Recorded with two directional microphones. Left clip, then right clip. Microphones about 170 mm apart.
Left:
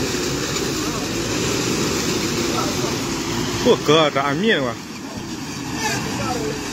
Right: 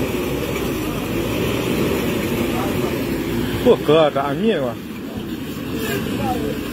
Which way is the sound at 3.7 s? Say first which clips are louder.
Right 2 dB; 20° left (ahead or behind).